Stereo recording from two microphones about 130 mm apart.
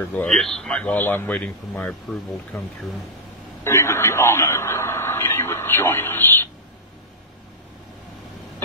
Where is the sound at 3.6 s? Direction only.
20° left (ahead or behind).